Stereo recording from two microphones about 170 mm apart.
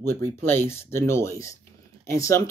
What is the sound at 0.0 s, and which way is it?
Speech, 15° left (ahead or behind).